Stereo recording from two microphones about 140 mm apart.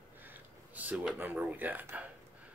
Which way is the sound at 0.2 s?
10° right (ahead or behind).